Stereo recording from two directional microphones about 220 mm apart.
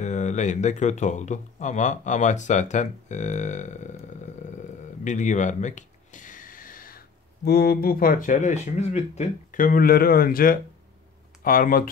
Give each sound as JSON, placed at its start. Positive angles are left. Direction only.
{"t": 0.0, "sound": "speech", "side_deg": 30}
{"t": 5.0, "sound": "a sound", "side_deg": 35}
{"t": 7.4, "sound": "speech", "side_deg": 45}